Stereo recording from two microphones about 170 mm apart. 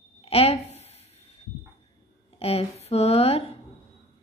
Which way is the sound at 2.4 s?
35° left (ahead or behind).